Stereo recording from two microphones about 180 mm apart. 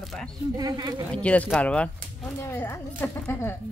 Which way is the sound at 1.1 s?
5° left (ahead or behind).